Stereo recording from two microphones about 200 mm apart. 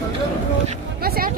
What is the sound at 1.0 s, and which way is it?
Vehicle, 50° right (ahead or behind).